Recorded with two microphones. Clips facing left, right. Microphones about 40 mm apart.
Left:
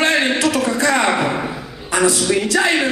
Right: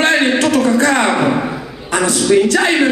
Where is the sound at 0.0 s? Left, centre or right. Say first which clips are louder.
Right 3 dB; right.